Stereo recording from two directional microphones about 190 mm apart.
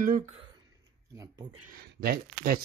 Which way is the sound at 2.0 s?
50° right (ahead or behind).